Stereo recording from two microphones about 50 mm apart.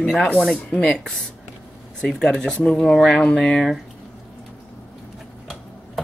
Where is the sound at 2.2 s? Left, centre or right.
Centre.